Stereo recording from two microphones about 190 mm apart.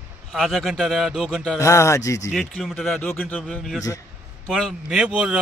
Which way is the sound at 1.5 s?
15° left (ahead or behind).